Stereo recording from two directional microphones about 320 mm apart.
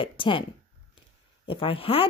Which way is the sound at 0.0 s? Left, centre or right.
Centre.